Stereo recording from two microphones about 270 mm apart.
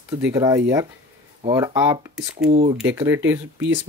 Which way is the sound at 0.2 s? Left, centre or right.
Centre.